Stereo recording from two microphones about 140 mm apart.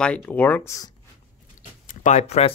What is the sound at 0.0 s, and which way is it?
Speech, 5° left (ahead or behind).